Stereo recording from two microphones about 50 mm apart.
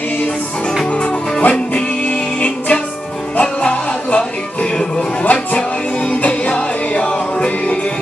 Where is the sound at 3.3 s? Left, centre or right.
Left.